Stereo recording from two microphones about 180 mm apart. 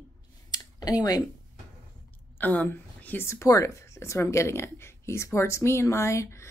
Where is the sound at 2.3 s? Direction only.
10° left (ahead or behind).